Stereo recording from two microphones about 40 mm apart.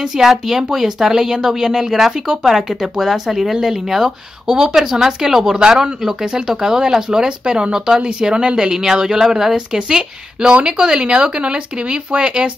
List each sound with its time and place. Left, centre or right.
0.0 s a woman's voice: centre